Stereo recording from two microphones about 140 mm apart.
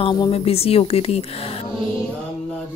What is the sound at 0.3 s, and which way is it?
A woman's voice, 45° left (ahead or behind).